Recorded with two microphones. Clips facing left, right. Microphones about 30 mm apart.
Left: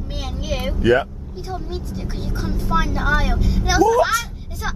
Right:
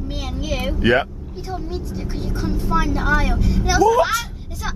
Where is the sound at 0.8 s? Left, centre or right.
Right.